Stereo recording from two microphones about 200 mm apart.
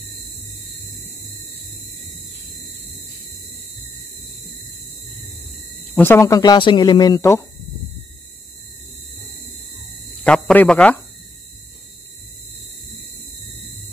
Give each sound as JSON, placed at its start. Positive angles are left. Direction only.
{"t": 5.9, "sound": "speech", "side_deg": 10}
{"t": 10.2, "sound": "speech", "side_deg": 5}